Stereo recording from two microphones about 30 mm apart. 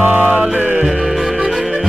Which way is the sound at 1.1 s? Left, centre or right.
Centre.